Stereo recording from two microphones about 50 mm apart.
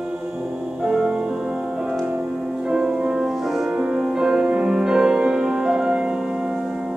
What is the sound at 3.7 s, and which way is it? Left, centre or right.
Music, right.